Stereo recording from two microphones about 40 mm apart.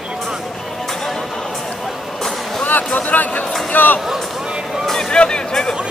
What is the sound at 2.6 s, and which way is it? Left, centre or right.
Speech, left.